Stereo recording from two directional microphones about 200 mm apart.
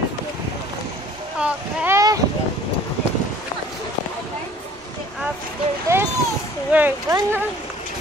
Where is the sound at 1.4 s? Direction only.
10° right (ahead or behind).